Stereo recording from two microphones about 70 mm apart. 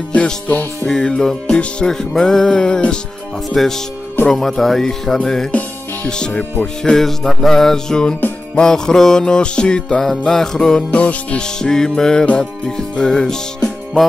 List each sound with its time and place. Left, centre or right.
0.1 s music: left
0.8 s music: centre
3.4 s speech: centre
6.0 s music: centre
11.0 s music: centre